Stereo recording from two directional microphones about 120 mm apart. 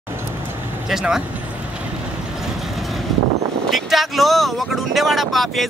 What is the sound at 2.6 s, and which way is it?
Vehicle, centre (ahead or behind).